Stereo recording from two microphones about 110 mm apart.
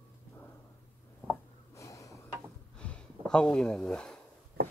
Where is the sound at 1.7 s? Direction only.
30° left (ahead or behind).